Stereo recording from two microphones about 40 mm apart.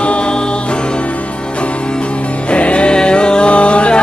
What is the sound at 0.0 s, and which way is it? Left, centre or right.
Music, left.